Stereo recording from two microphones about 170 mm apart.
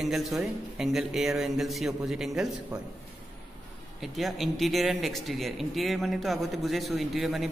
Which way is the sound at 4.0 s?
Centre (ahead or behind).